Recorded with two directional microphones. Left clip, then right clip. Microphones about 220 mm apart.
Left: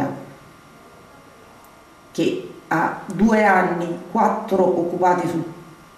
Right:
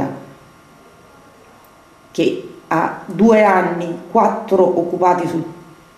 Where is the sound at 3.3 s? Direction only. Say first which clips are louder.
Right 4 dB; 10° right (ahead or behind).